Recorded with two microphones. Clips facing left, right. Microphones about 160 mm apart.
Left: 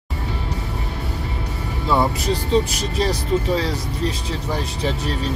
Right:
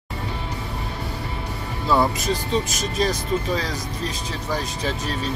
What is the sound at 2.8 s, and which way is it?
Speech, 30° left (ahead or behind).